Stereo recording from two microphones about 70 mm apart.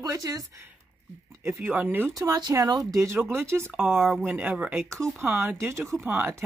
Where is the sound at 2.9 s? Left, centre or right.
Right.